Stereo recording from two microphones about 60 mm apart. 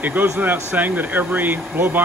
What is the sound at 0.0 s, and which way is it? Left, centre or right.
Speech, right.